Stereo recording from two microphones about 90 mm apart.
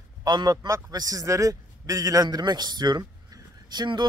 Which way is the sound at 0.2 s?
50° right (ahead or behind).